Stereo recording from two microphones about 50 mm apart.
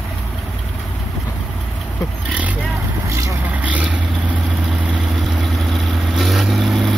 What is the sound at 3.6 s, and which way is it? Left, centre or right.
Vehicle, right.